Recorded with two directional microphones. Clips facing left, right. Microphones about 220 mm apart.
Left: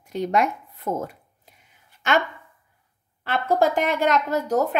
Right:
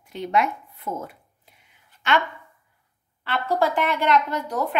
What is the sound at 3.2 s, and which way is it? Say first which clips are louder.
A woman's voice: left 2 dB; 45° left (ahead or behind).